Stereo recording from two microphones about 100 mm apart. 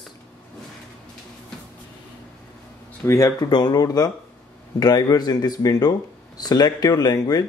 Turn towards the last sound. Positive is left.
turn(degrees=40)  # may be behind; listen again after turning